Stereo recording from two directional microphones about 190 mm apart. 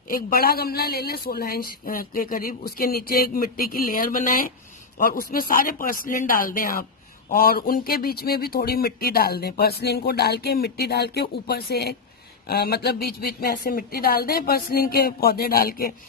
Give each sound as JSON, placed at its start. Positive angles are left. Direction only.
{"t": 0.1, "sound": "a man's voice", "side_deg": 50}